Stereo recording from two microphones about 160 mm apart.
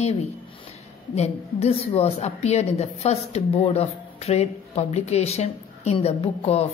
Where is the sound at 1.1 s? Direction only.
40° left (ahead or behind).